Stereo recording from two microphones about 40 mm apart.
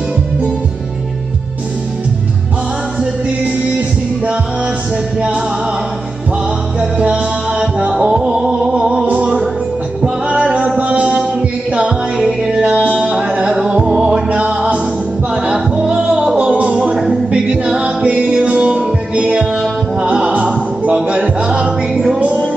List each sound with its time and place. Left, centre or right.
8.1 s music: centre
9.0 s music: right
10.8 s mantra: right
12.2 s music: centre
15.4 s music: right
16.3 s music: right
17.1 s a capella: right
17.6 s music: right
20.0 s music: centre
20.2 s music: right
21.9 s music: centre